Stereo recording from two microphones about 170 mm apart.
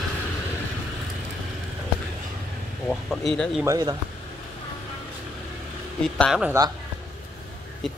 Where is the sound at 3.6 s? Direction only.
20° right (ahead or behind).